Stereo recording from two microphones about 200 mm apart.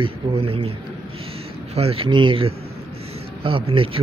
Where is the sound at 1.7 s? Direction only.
30° right (ahead or behind).